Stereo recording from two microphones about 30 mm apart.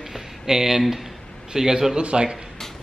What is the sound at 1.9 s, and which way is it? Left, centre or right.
Speech, right.